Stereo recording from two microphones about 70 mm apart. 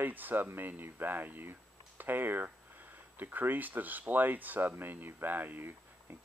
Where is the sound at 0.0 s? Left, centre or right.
Right.